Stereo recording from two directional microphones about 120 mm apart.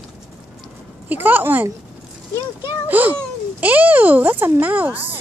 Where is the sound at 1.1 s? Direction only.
15° right (ahead or behind).